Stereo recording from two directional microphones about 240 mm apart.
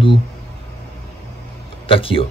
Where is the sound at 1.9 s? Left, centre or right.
Left.